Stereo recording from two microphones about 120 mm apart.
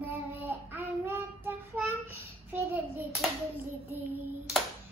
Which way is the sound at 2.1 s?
20° right (ahead or behind).